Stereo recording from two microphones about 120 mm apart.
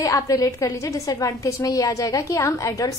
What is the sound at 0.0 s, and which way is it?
A woman's voice, 30° left (ahead or behind).